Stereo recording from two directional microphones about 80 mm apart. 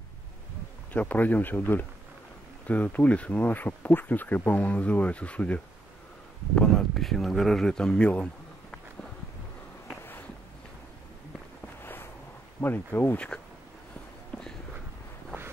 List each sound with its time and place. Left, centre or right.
0.9 s speech: centre
11.8 s a sound: left
12.5 s speech: left